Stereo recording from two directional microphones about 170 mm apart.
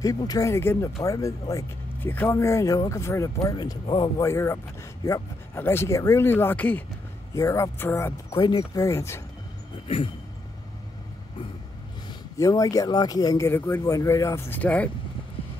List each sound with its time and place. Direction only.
0.0 s speech: 20° left (ahead or behind)
4.2 s a man's voice: 15° left (ahead or behind)
8.4 s speech: 25° left (ahead or behind)
12.1 s a man's voice: 20° left (ahead or behind)